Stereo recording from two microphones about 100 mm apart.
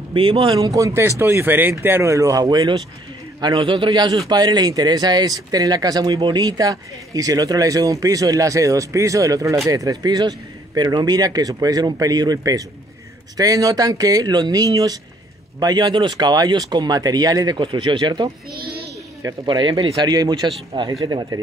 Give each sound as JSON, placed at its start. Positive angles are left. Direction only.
{"t": 0.1, "sound": "a man's voice", "side_deg": -60}
{"t": 0.6, "sound": "speech", "side_deg": -35}
{"t": 3.5, "sound": "a man's voice", "side_deg": -55}
{"t": 15.6, "sound": "speech", "side_deg": -45}
{"t": 19.4, "sound": "speech", "side_deg": -50}